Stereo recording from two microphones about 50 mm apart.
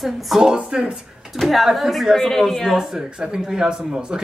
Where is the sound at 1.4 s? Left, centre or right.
Centre.